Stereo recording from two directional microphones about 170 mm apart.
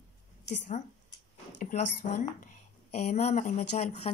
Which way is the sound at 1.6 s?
50° left (ahead or behind).